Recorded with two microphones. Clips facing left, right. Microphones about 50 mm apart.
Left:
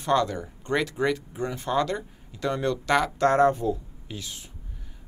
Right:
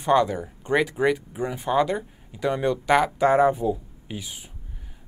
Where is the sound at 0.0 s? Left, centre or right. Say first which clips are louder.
Right 3 dB; centre.